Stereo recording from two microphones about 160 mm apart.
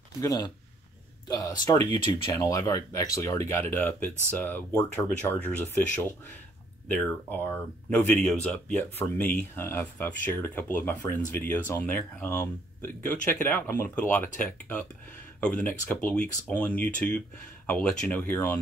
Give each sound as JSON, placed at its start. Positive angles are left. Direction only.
{"t": 0.2, "sound": "speech", "side_deg": 20}